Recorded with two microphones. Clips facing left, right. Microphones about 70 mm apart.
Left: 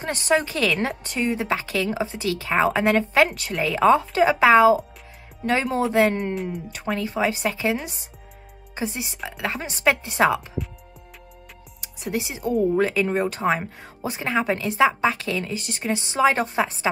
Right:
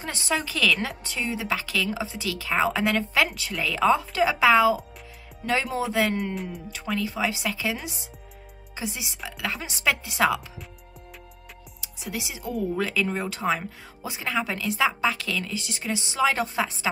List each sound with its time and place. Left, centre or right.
0.0 s speech: left
3.6 s speech: left
8.7 s speech: left
12.1 s speech: left